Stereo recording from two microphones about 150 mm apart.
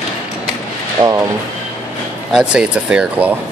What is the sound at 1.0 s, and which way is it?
Speech, 35° right (ahead or behind).